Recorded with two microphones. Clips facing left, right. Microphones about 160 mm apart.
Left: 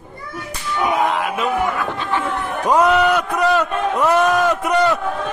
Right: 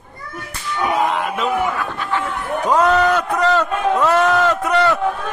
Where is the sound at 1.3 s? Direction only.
15° left (ahead or behind).